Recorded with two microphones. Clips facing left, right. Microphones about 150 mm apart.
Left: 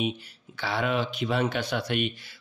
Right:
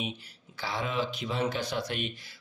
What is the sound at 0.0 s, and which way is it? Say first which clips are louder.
Speech: left 7 dB; 70° left (ahead or behind).